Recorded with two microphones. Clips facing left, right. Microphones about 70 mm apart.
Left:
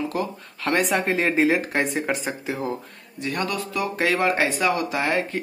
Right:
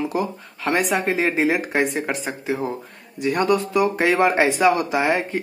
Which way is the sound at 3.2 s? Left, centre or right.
Right.